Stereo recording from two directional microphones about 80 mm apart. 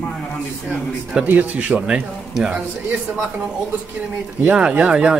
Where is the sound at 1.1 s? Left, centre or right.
Centre.